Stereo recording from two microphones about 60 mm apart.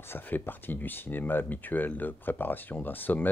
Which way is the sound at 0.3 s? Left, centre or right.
Left.